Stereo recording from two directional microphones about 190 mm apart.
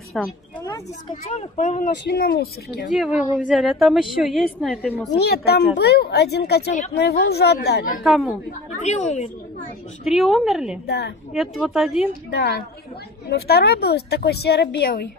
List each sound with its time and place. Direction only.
0.2 s a woman's voice: centre (ahead or behind)
1.2 s speech: 40° left (ahead or behind); by 2.9 s 60° left (ahead or behind)
2.9 s a woman's voice: 5° right (ahead or behind)
5.1 s a woman's voice: 60° left (ahead or behind)
8.0 s a woman's voice: centre (ahead or behind)
8.8 s a woman's voice: 35° left (ahead or behind)
10.0 s a woman's voice: centre (ahead or behind)
10.9 s a woman's voice: 60° left (ahead or behind)
11.3 s a woman's voice: centre (ahead or behind)
12.4 s a woman's voice: 60° left (ahead or behind)